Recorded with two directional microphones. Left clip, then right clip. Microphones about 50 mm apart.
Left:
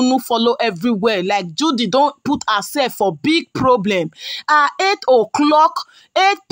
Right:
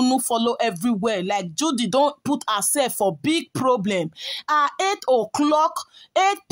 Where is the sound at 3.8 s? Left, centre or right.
Centre.